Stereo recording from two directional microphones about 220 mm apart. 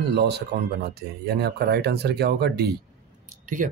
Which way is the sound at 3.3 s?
35° right (ahead or behind).